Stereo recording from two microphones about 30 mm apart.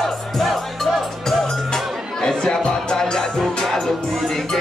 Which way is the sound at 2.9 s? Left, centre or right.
Left.